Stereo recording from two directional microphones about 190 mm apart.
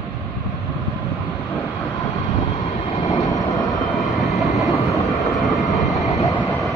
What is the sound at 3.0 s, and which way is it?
Vehicle, 15° left (ahead or behind).